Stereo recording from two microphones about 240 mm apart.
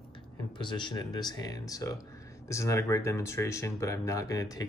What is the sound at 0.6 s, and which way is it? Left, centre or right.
Speech, centre.